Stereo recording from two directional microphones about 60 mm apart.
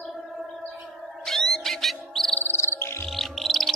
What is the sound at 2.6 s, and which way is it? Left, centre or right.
Music, left.